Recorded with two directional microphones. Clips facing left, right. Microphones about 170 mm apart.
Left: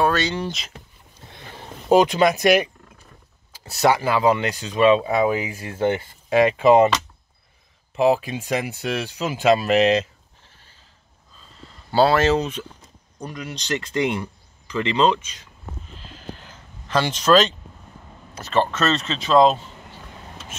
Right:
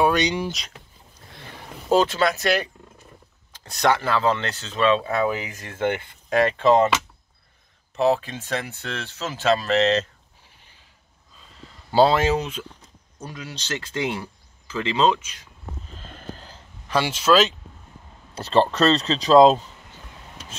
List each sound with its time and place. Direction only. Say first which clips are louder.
0.0 s speech: right 1 dB; 15° right (ahead or behind)
0.5 s speech: left 1 dB; centre (ahead or behind)
1.3 s vehicle: left 1 dB; 15° left (ahead or behind)
3.5 s speech: left 2 dB; 5° left (ahead or behind)
7.9 s speech: left 2 dB; 10° left (ahead or behind)
11.9 s speech: left 1 dB; 15° right (ahead or behind)
16.0 s a sound: even; 50° right (ahead or behind)
16.9 s speech: left 2 dB; 5° right (ahead or behind)
18.3 s speech: right 2 dB; 30° right (ahead or behind)